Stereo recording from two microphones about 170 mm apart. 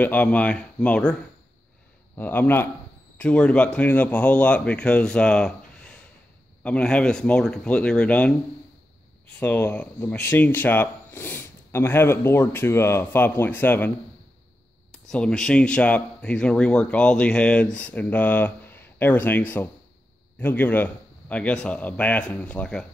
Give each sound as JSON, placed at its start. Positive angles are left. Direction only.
{"t": 0.0, "sound": "speech", "side_deg": 10}
{"t": 2.1, "sound": "speech", "side_deg": 10}
{"t": 9.4, "sound": "speech", "side_deg": 10}